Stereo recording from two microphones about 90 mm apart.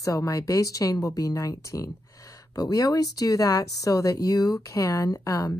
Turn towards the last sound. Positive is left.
turn(degrees=40)  # may be behind; listen again after turning